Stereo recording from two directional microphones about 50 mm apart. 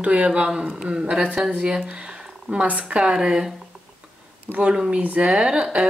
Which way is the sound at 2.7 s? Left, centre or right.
Right.